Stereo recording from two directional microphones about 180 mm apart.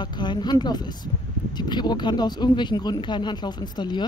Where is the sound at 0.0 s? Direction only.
25° left (ahead or behind).